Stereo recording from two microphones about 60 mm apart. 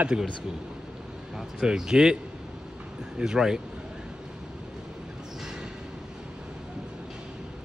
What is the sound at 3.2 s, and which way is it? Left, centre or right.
Speech, centre.